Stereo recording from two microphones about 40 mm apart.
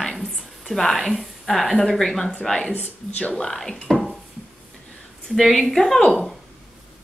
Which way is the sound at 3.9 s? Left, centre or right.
Centre.